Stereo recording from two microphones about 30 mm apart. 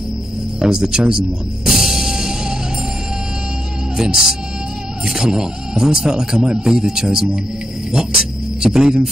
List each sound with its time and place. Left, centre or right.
0.6 s speech: right
1.7 s music: centre
3.9 s music: right
5.0 s speech: right
8.0 s music: centre